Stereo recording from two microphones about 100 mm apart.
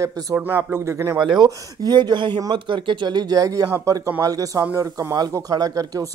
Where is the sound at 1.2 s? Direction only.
45° right (ahead or behind).